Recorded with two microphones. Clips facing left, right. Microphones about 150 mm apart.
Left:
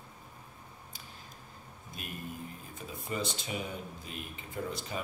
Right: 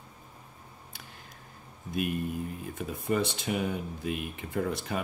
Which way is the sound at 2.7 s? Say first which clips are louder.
Right 8 dB; 60° right (ahead or behind).